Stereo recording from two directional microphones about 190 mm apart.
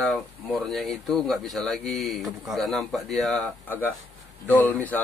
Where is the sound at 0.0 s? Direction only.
Centre (ahead or behind).